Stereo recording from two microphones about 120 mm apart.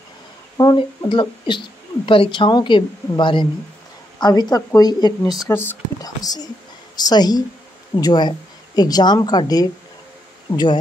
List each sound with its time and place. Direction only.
0.7 s a woman's voice: 45° left (ahead or behind)
5.5 s speech: 20° left (ahead or behind)
6.0 s a woman's voice: 35° left (ahead or behind)